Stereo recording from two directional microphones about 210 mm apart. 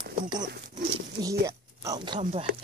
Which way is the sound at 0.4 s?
45° right (ahead or behind).